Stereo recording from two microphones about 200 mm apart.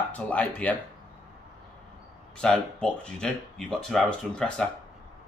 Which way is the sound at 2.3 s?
5° left (ahead or behind).